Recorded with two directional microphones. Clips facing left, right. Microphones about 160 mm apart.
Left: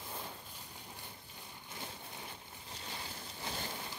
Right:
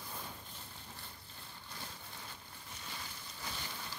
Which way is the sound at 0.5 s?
15° left (ahead or behind).